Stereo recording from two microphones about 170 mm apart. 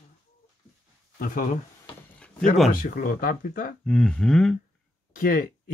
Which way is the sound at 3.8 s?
5° left (ahead or behind).